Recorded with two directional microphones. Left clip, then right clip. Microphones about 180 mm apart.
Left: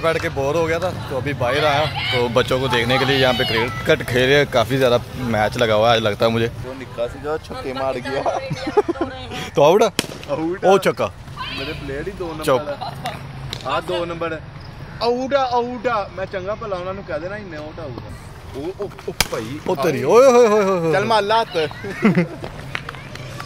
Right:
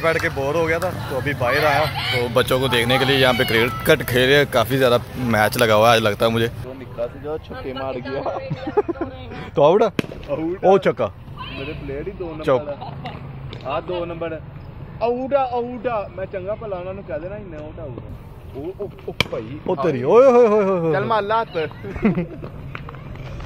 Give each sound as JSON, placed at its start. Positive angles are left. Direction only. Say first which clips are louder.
{"t": 0.0, "sound": "speech", "louder": "even", "side_deg": 10}
{"t": 2.4, "sound": "speech", "louder": "even", "side_deg": 0}
{"t": 3.3, "sound": "speech", "louder": "right 1 dB", "side_deg": -20}
{"t": 4.0, "sound": "speech", "louder": "even", "side_deg": 0}
{"t": 6.1, "sound": "speech", "louder": "left 1 dB", "side_deg": 5}
{"t": 7.0, "sound": "speech", "louder": "left 3 dB", "side_deg": 30}
{"t": 9.6, "sound": "speech", "louder": "left 1 dB", "side_deg": 20}
{"t": 10.7, "sound": "speech", "louder": "even", "side_deg": 15}
{"t": 11.5, "sound": "speech", "louder": "left 1 dB", "side_deg": 30}
{"t": 12.4, "sound": "speech", "louder": "left 1 dB", "side_deg": 15}
{"t": 14.0, "sound": "a man's voice", "louder": "left 3 dB", "side_deg": 40}
{"t": 19.1, "sound": "speech", "louder": "left 1 dB", "side_deg": 15}
{"t": 20.9, "sound": "speech", "louder": "left 3 dB", "side_deg": 65}
{"t": 22.0, "sound": "a man's voice", "louder": "left 3 dB", "side_deg": 35}